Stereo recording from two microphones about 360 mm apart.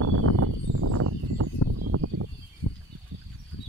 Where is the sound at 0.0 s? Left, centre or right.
Right.